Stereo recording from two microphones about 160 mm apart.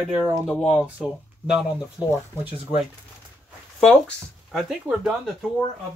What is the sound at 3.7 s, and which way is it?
Speech, 5° left (ahead or behind).